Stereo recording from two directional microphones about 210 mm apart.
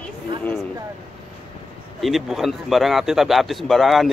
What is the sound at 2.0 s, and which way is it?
Speech, centre (ahead or behind).